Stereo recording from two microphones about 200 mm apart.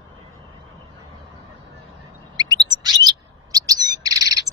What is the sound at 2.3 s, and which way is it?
Chirp, 20° right (ahead or behind).